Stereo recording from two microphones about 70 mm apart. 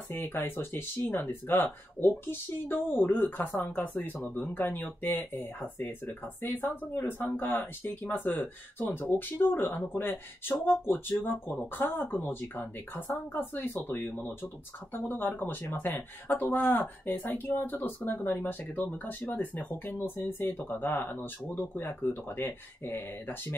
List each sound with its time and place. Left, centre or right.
0.1 s speech: left